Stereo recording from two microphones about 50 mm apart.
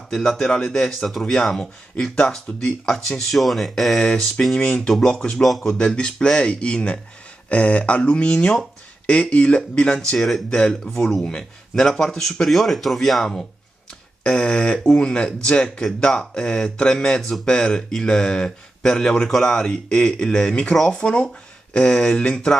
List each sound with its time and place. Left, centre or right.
0.1 s a man's voice: centre
5.4 s speech: centre
5.9 s speech: centre
10.1 s speech: centre
10.5 s a man's voice: centre
14.2 s a man's voice: centre
21.0 s a man's voice: left